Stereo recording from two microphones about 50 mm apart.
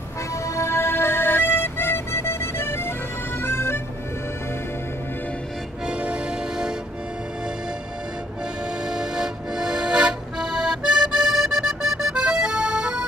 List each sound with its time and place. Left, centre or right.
0.5 s music: left
5.9 s music: right
8.8 s music: centre